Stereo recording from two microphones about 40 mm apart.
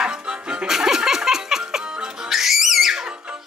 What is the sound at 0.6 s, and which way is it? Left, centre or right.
Music, centre.